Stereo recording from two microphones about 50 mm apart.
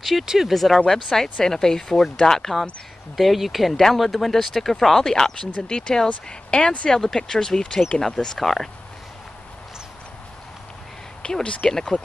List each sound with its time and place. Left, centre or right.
0.0 s speech: centre; by 6.9 s left
6.9 s speech: centre
11.2 s speech: centre